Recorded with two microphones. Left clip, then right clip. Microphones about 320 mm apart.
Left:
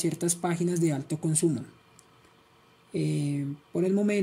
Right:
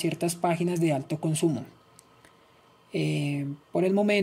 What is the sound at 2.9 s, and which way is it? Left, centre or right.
Speech, centre.